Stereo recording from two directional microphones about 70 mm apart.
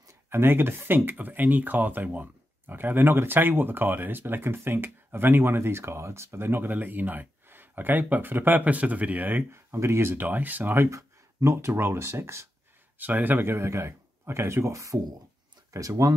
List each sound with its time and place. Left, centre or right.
0.3 s speech: right
9.5 s speech: right
10.9 s speech: right
13.0 s speech: right